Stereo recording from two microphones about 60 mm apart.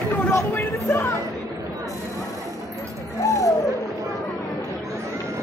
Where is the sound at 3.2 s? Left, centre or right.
Left.